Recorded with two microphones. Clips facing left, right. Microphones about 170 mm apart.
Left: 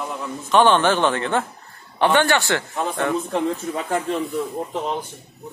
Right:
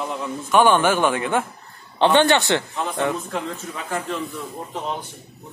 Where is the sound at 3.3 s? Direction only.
35° left (ahead or behind).